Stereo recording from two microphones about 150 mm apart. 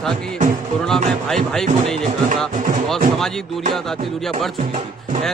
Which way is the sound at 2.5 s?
55° right (ahead or behind).